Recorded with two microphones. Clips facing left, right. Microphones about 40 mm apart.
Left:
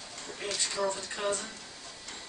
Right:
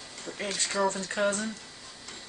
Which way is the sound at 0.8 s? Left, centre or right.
Right.